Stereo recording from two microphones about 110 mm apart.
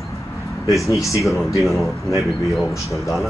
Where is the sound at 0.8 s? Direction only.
30° left (ahead or behind).